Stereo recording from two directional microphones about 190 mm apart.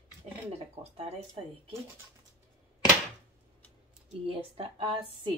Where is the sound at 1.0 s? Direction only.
30° right (ahead or behind).